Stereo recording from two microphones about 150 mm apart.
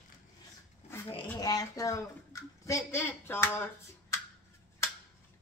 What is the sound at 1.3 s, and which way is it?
Speech, 25° left (ahead or behind).